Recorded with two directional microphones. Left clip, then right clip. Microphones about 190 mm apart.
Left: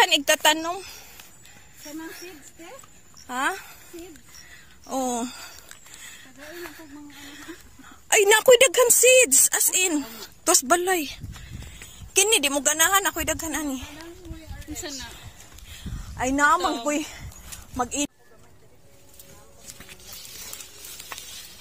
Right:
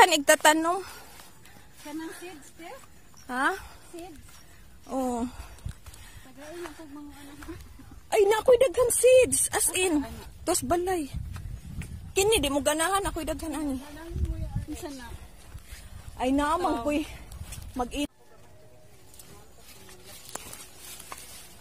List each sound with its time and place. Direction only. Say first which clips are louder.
0.0 s a woman's voice: even; 35° right (ahead or behind)
3.3 s speech: left 1 dB; 20° right (ahead or behind)
4.8 s wail: left 3 dB; 5° right (ahead or behind)
8.1 s a woman's voice: left 5 dB; 20° left (ahead or behind)
12.1 s a woman's voice: left 3 dB; 5° right (ahead or behind)
12.6 s a woman's voice: left 5 dB; centre (ahead or behind)
16.2 s a woman's voice: left 6 dB; centre (ahead or behind)
17.7 s speech: left 4 dB; 20° left (ahead or behind)